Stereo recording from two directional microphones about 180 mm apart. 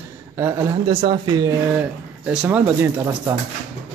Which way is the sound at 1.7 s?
10° right (ahead or behind).